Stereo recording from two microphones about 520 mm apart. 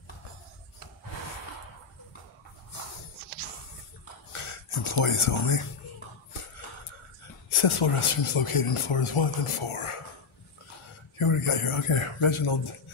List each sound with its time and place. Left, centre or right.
4.3 s a sound: left
5.0 s speech: left
7.4 s speech: left
11.1 s speech: left